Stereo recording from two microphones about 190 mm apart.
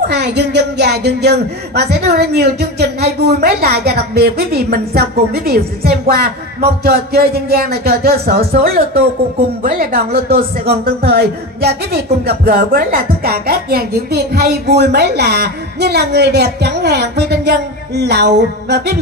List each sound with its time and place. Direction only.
0.1 s speech: 65° right (ahead or behind)